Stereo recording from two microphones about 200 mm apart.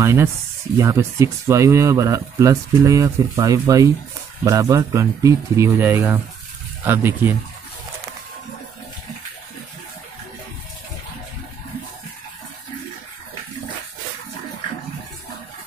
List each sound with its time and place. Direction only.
0.0 s speech: 15° right (ahead or behind)